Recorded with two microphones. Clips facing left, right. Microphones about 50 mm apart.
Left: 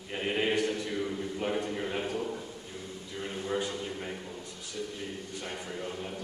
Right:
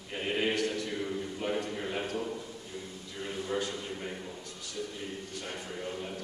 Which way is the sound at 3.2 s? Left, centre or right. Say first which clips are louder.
Left 1 dB; centre.